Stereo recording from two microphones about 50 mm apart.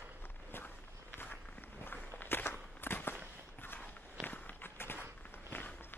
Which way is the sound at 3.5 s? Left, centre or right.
Left.